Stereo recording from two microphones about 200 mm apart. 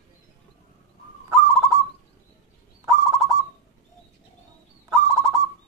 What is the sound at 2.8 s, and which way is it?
Owl, 15° right (ahead or behind).